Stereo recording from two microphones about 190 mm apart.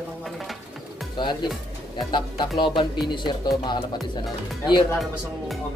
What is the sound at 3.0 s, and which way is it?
Speech, 25° left (ahead or behind).